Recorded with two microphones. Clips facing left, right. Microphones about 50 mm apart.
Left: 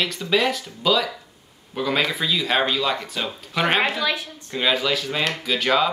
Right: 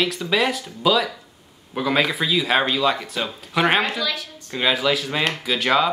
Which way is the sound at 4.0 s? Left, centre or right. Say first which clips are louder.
Left 2 dB; left.